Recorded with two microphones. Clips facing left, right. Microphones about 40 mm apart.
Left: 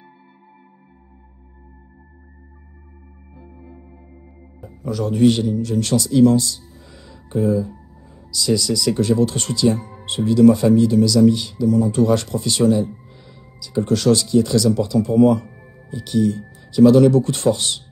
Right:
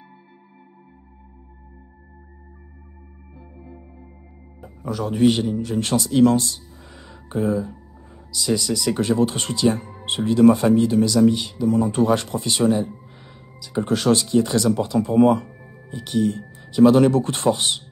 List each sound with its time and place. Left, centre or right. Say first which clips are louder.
3.3 s organ: left 1 dB; centre
4.8 s a man's voice: left 2 dB; centre
5.4 s speech: left 2 dB; right
8.3 s speech: left 3 dB; centre
11.1 s a man's voice: left 2 dB; centre; by 15.5 s right
15.9 s a man's voice: left 3 dB; centre
16.3 s speech: left 2 dB; right